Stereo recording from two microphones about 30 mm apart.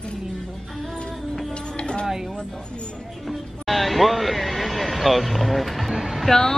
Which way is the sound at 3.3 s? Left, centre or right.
Centre.